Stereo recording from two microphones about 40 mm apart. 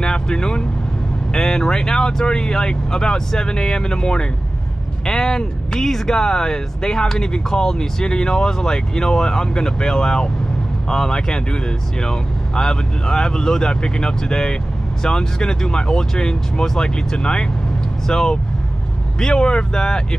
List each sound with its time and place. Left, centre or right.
0.0 s speech: left